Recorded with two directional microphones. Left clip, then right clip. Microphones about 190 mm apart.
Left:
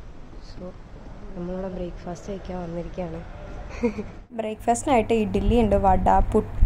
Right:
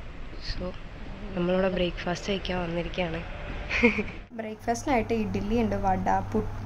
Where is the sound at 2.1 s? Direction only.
10° left (ahead or behind).